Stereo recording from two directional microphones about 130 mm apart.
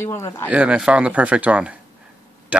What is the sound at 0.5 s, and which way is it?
Speech, 10° right (ahead or behind).